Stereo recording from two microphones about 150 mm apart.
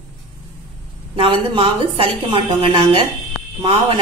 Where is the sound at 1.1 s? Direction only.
40° right (ahead or behind).